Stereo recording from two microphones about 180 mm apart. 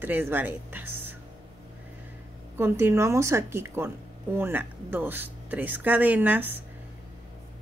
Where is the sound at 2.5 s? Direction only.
15° right (ahead or behind).